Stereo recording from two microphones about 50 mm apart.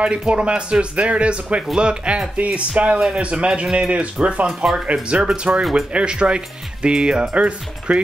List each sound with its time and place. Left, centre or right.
0.0 s speech: right
5.6 s speech: centre
5.9 s speech: right